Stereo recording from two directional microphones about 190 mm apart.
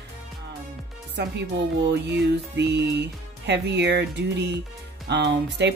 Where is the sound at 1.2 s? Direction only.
60° right (ahead or behind).